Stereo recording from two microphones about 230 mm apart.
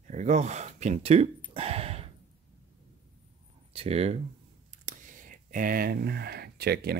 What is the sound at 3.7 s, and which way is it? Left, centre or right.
Speech, right.